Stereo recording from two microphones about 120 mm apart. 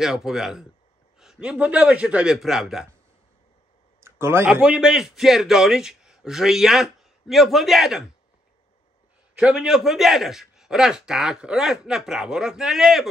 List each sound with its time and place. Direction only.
0.0 s a man's voice: 5° right (ahead or behind)
4.0 s a sound: 20° right (ahead or behind)
4.5 s a man's voice: 5° right (ahead or behind)
9.4 s a man's voice: 5° right (ahead or behind)